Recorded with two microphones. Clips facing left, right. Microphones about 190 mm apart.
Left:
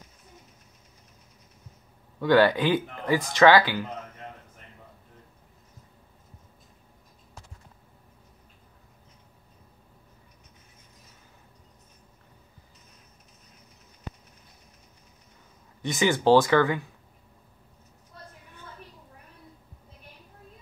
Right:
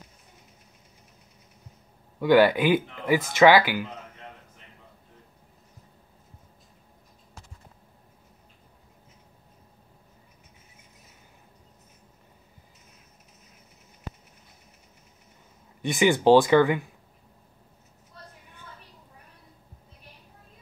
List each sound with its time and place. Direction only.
2.1 s speech: 10° right (ahead or behind)
15.8 s speech: 15° right (ahead or behind)